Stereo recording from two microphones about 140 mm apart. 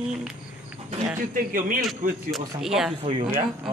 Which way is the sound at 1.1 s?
75° right (ahead or behind).